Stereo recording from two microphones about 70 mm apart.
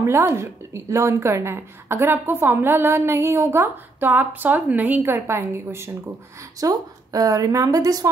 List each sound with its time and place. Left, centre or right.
0.0 s a woman's voice: right
4.0 s a woman's voice: right
6.6 s speech: right